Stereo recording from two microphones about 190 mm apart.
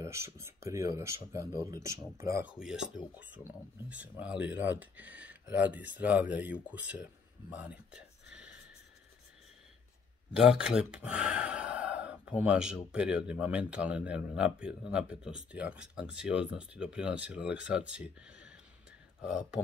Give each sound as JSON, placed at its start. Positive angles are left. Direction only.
{"t": 0.0, "sound": "speech", "side_deg": -15}
{"t": 2.5, "sound": "speech", "side_deg": -5}
{"t": 10.3, "sound": "speech", "side_deg": -5}